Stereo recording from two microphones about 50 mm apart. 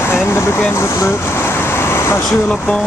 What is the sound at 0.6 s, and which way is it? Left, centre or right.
Speech, left.